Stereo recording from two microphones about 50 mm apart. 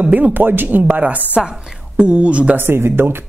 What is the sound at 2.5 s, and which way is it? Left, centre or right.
Speech, right.